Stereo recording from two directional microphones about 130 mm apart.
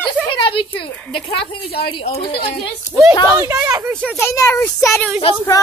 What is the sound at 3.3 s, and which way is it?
Speech, 20° right (ahead or behind).